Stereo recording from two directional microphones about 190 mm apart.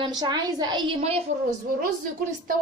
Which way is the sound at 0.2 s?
20° right (ahead or behind).